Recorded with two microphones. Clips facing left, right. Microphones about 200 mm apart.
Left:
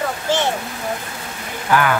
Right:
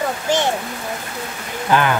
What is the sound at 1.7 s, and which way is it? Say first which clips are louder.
Speech: even; 20° right (ahead or behind).